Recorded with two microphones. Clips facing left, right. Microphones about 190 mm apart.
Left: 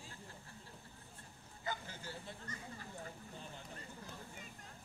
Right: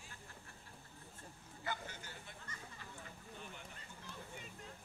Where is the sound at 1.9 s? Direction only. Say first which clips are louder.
Left 5 dB; 30° left (ahead or behind).